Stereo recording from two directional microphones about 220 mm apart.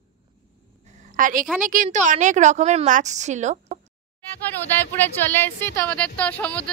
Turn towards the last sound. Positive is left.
turn(degrees=5)  # may be behind; listen again after turning